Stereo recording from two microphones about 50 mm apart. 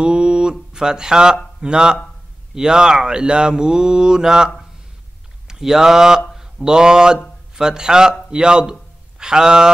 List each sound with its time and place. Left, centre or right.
0.0 s mantra: centre
5.5 s mantra: centre
6.3 s speech: centre
7.5 s mantra: centre